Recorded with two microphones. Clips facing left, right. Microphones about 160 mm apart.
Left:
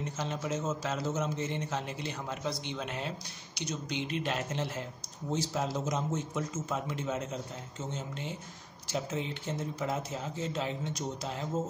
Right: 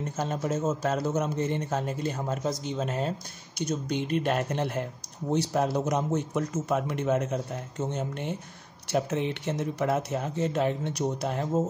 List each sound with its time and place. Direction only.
0.2 s a man's voice: 50° right (ahead or behind)